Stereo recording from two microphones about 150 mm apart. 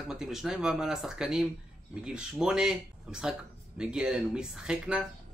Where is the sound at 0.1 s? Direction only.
5° right (ahead or behind).